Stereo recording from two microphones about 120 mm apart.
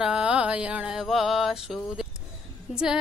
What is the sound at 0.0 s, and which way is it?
Mantra, 5° right (ahead or behind).